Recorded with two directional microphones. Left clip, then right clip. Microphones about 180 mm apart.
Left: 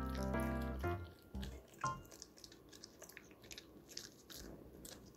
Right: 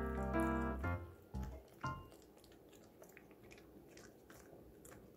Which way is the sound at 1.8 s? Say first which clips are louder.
Left 4 dB; 20° right (ahead or behind).